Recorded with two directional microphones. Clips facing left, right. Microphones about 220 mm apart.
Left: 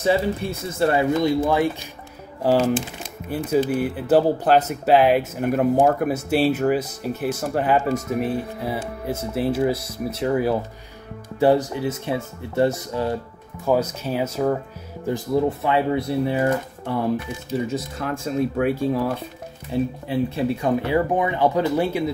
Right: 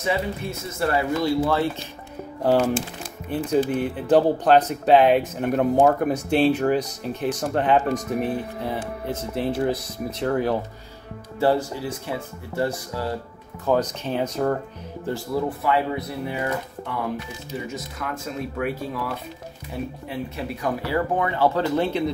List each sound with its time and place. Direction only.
0.0 s speech: 30° left (ahead or behind); by 10.6 s 5° left (ahead or behind)
11.3 s speech: 15° left (ahead or behind)
13.7 s speech: 10° left (ahead or behind)
15.0 s speech: 20° left (ahead or behind)
17.6 s speech: 30° left (ahead or behind); by 22.1 s 10° left (ahead or behind)